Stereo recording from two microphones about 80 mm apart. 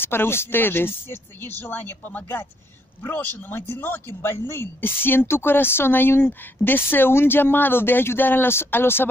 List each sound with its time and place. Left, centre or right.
0.0 s speech: left